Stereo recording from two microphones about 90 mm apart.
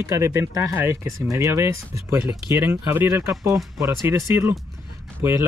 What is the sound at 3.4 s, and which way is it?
Speech, 40° right (ahead or behind).